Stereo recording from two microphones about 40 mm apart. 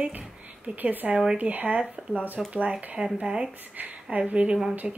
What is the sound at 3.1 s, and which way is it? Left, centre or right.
Speech, centre.